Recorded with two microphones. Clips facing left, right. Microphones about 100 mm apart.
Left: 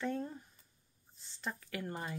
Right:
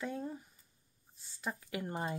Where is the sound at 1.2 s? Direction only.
10° right (ahead or behind).